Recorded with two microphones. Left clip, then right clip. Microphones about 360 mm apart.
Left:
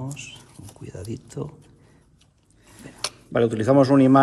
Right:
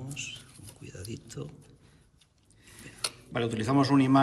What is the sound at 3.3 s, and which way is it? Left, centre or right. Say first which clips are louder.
Speech: left 11 dB; centre.